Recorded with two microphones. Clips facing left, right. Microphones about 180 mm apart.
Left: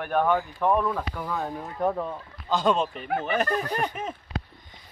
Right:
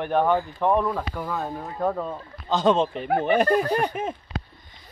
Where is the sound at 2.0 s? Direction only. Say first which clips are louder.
Right 2 dB; 20° right (ahead or behind).